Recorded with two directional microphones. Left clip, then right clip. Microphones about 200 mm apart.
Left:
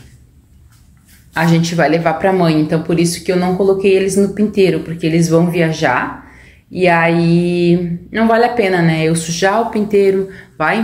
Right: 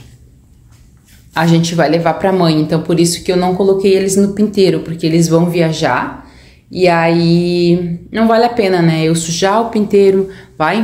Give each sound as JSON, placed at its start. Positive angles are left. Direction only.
{"t": 1.3, "sound": "a woman's voice", "side_deg": -15}